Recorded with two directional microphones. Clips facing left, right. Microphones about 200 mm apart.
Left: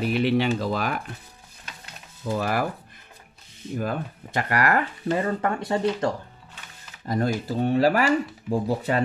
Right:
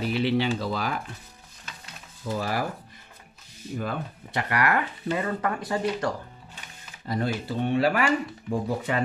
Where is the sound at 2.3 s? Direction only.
55° left (ahead or behind).